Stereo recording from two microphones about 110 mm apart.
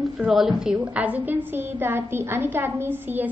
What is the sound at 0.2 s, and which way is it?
A woman's voice, 5° right (ahead or behind).